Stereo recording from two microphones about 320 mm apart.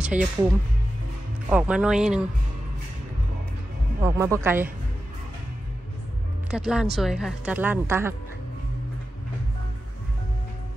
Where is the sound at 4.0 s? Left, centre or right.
Centre.